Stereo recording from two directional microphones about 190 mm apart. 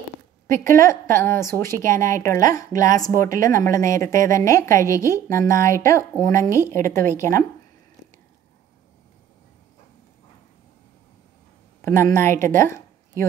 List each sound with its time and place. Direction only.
0.5 s a woman's voice: 15° left (ahead or behind)
11.8 s speech: 15° left (ahead or behind)